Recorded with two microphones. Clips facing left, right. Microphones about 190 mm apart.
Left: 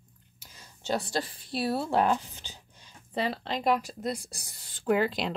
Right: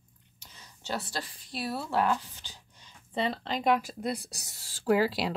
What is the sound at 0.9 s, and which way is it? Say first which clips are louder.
Speech: left 5 dB; 25° left (ahead or behind).